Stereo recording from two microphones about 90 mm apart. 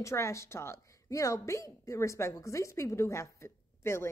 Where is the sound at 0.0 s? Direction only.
35° left (ahead or behind).